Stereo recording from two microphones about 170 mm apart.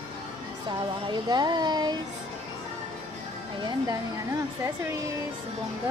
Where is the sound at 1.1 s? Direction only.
25° right (ahead or behind).